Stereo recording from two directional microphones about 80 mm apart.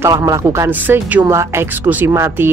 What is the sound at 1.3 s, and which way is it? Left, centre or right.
Speech, right.